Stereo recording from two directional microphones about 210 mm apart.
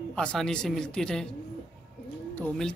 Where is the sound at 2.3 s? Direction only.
10° left (ahead or behind).